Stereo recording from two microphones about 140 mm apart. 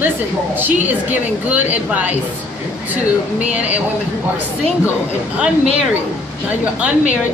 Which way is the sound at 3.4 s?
10° right (ahead or behind).